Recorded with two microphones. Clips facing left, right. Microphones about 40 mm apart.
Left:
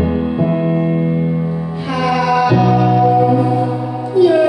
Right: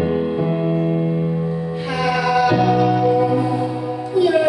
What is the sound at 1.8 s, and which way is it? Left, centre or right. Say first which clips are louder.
Music: left 4 dB; centre.